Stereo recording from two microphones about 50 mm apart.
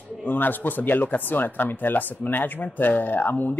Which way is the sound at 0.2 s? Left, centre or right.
Left.